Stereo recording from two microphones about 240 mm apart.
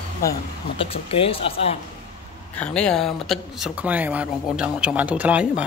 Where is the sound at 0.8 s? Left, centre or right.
Left.